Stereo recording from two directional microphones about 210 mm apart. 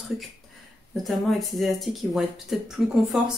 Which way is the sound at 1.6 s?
Centre (ahead or behind).